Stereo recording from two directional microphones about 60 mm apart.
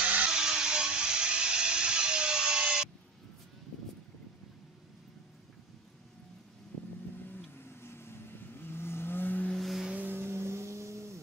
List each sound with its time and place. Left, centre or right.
0.4 s a sound: centre
7.2 s vehicle: left
9.6 s music: centre
9.9 s vehicle: right